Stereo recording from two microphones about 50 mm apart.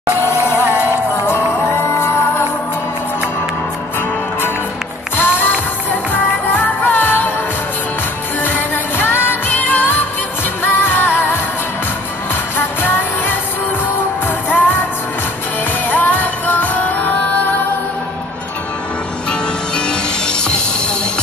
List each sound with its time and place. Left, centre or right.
0.1 s music: left
5.1 s music: left
8.5 s music: left
9.5 s music: left
12.5 s music: left
14.5 s music: left
15.9 s music: left
19.9 s music: centre